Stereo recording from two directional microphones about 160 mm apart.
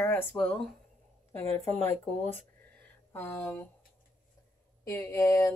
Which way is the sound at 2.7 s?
10° left (ahead or behind).